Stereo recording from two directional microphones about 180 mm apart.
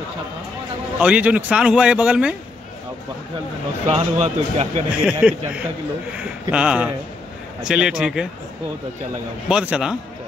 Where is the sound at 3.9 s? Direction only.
35° right (ahead or behind).